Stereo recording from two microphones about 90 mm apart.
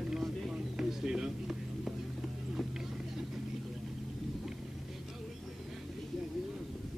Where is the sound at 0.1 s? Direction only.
5° right (ahead or behind).